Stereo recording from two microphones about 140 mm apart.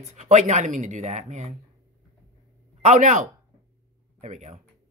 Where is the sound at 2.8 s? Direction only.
60° right (ahead or behind).